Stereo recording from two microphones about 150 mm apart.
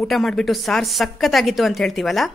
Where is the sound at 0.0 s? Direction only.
Centre (ahead or behind).